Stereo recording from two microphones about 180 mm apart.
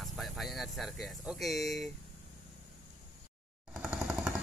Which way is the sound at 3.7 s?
5° right (ahead or behind).